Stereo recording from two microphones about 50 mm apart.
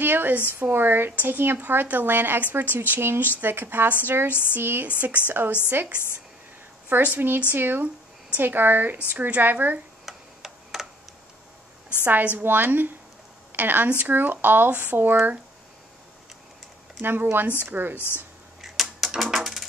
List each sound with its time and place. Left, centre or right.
0.0 s a woman's voice: right
4.3 s a sound: left
4.6 s a woman's voice: right
6.9 s a woman's voice: right
10.0 s tick-tock: centre
12.0 s a woman's voice: right
13.8 s speech: right
14.1 s a woman's voice: right
17.0 s speech: right
18.6 s typewriter: centre